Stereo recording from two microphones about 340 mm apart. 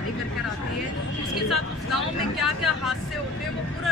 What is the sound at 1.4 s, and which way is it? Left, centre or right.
Speech, centre.